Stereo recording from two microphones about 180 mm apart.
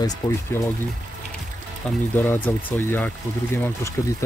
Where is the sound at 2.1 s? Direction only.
10° left (ahead or behind).